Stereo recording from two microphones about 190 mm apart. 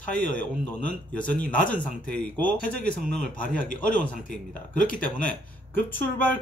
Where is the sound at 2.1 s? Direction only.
5° left (ahead or behind).